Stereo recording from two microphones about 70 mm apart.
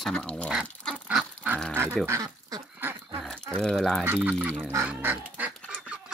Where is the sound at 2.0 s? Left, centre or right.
Right.